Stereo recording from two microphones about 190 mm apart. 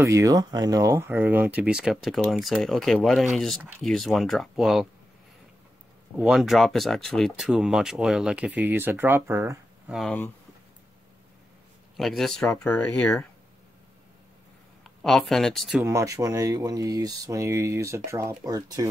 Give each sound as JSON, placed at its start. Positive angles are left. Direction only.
{"t": 0.0, "sound": "speech", "side_deg": -15}
{"t": 6.1, "sound": "speech", "side_deg": -5}
{"t": 9.9, "sound": "speech", "side_deg": 5}
{"t": 12.0, "sound": "speech", "side_deg": 0}
{"t": 13.0, "sound": "speech", "side_deg": 15}
{"t": 14.8, "sound": "speech", "side_deg": 0}
{"t": 15.8, "sound": "speech", "side_deg": -15}